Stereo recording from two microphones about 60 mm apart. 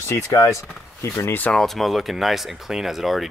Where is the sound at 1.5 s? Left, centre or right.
Left.